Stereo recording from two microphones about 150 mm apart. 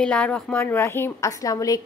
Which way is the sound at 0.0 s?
10° left (ahead or behind).